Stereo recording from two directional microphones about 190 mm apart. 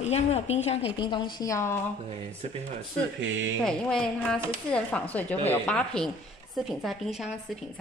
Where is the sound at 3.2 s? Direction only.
80° right.